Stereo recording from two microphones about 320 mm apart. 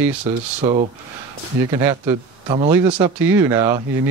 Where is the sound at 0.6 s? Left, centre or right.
Centre.